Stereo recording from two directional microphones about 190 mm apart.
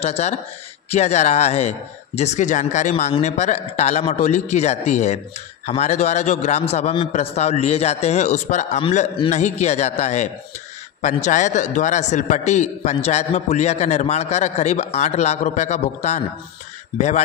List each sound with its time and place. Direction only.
0.0 s a man's voice: 35° left (ahead or behind)